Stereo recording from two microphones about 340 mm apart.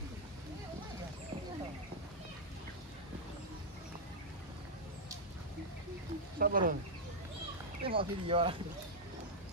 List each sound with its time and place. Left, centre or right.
6.3 s speech: right
7.8 s speech: centre